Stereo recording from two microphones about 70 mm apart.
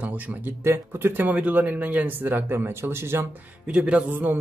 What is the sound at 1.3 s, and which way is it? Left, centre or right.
Speech, right.